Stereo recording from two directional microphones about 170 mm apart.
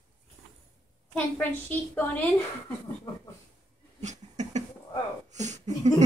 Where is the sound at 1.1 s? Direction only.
10° left (ahead or behind).